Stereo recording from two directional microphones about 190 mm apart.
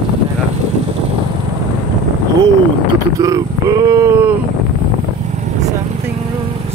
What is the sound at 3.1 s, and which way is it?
Speech, 20° right (ahead or behind).